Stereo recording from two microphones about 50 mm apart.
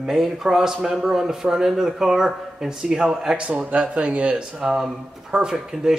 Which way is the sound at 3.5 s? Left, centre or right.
Right.